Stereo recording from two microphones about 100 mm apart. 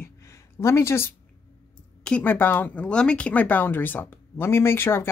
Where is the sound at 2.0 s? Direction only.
10° left (ahead or behind).